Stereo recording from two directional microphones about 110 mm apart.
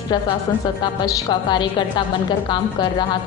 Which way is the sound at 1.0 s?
45° left (ahead or behind).